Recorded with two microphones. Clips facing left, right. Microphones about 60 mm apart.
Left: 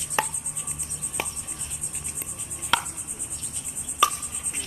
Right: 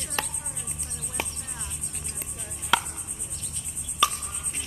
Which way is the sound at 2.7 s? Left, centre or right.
Centre.